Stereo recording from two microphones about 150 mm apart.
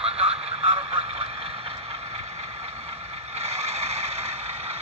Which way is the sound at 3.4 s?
45° right (ahead or behind).